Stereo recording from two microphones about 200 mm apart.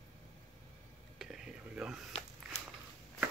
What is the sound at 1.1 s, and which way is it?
Whispering, centre (ahead or behind).